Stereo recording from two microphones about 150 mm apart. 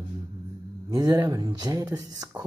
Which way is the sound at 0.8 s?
25° right (ahead or behind).